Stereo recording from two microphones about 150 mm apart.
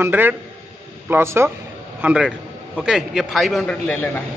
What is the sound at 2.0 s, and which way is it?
A man's voice, 5° right (ahead or behind).